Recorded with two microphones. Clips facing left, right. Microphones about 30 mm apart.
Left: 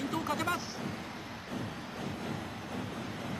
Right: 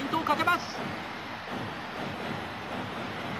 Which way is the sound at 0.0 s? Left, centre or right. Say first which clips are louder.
Right 6 dB; right.